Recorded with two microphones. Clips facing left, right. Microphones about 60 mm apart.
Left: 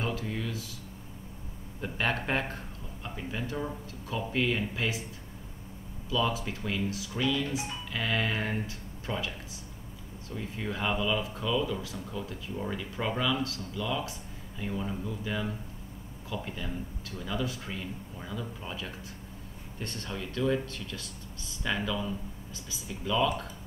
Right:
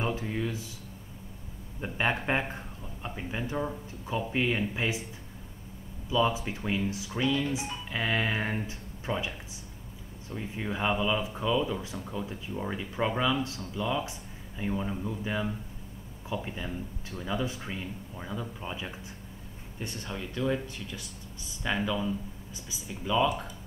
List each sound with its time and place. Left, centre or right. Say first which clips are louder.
0.0 s speech: right 2 dB; right
1.8 s speech: right 1 dB; centre
6.0 s speech: right 3 dB; right
10.3 s speech: right 1 dB; right
16.4 s speech: right 1 dB; right